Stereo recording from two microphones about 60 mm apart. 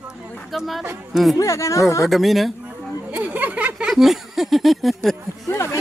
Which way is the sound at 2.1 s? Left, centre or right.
Centre.